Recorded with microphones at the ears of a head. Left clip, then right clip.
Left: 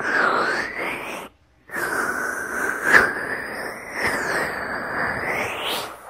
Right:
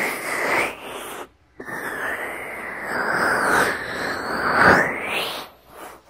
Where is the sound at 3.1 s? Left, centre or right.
Right.